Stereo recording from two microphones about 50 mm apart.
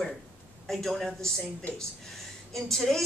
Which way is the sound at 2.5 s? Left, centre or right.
Centre.